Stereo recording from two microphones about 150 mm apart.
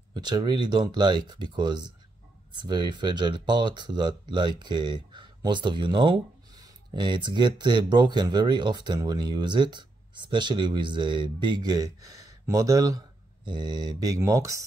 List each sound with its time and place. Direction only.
0.1 s speech: 30° right (ahead or behind)